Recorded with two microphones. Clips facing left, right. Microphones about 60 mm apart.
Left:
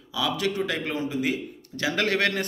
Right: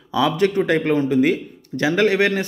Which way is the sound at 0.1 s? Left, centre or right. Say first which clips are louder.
Right 9 dB; right.